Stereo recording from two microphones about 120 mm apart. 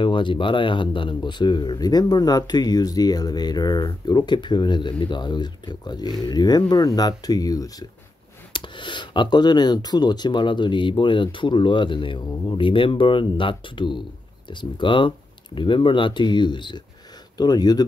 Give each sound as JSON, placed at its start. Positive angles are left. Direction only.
{"t": 0.0, "sound": "speech", "side_deg": 45}
{"t": 8.5, "sound": "speech", "side_deg": 40}